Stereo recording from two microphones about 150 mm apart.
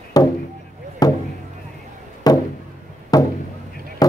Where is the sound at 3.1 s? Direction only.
25° left (ahead or behind).